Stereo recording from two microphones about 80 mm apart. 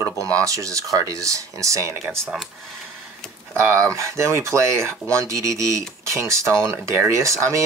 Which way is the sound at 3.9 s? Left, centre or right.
Right.